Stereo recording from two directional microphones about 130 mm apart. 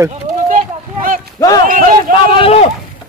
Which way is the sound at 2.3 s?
45° left (ahead or behind).